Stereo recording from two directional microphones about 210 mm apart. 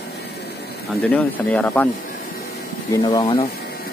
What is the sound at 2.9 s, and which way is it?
Speech, 20° left (ahead or behind).